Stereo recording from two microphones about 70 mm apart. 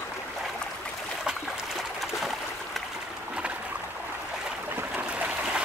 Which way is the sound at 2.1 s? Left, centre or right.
Centre.